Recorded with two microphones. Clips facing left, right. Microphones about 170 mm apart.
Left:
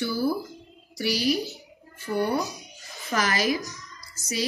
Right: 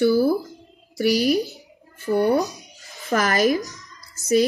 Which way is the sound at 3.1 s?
50° right (ahead or behind).